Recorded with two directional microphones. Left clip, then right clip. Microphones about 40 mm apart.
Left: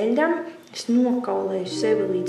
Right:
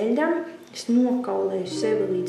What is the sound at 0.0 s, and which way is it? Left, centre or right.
A woman's voice, left.